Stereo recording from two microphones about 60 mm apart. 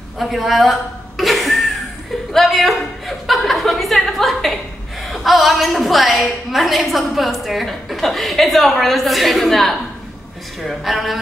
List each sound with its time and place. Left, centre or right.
0.2 s chuckle: centre
5.1 s a woman's voice: centre